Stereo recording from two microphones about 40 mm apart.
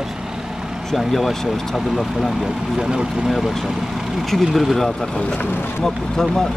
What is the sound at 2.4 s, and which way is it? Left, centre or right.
Speech, centre.